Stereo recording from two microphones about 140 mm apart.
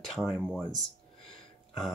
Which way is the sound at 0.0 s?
Centre (ahead or behind).